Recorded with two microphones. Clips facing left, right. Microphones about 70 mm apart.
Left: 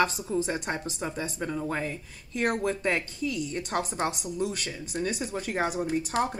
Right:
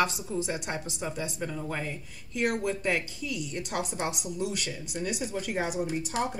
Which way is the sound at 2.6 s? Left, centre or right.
Left.